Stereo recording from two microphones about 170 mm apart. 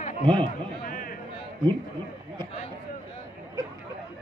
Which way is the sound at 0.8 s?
55° left (ahead or behind).